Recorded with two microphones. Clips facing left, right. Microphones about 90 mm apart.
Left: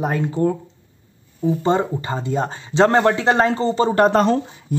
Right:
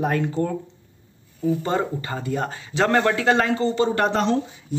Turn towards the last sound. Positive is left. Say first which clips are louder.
# left 5 dB
turn(degrees=45)  # may be behind; listen again after turning